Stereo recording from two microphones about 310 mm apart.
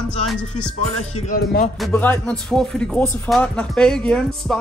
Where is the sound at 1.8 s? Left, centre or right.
Centre.